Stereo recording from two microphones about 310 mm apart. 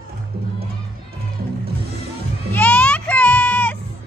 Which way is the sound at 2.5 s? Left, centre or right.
Centre.